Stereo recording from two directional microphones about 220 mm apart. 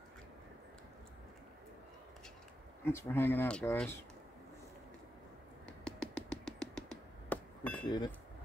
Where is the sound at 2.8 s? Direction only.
10° left (ahead or behind).